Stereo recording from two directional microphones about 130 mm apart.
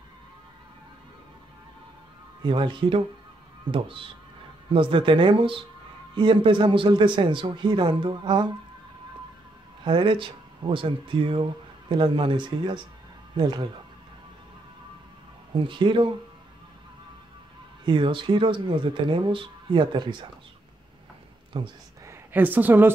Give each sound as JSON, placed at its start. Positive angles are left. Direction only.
{"t": 2.4, "sound": "speech", "side_deg": -35}
{"t": 9.8, "sound": "speech", "side_deg": -40}
{"t": 15.5, "sound": "speech", "side_deg": -40}
{"t": 17.8, "sound": "speech", "side_deg": -40}
{"t": 21.5, "sound": "speech", "side_deg": -40}
{"t": 22.0, "sound": "a woman's voice", "side_deg": -15}